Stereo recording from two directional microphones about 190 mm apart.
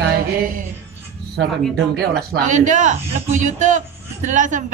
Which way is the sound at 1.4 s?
60° right (ahead or behind).